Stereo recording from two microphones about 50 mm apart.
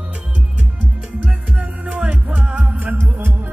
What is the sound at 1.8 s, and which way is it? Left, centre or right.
Music, right.